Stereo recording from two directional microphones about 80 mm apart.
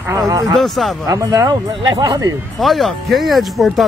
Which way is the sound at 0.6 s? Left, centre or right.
Centre.